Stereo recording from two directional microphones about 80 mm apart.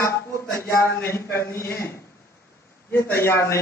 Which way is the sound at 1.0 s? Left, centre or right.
Left.